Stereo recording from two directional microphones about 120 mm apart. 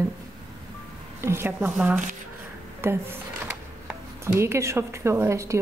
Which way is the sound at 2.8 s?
20° right (ahead or behind).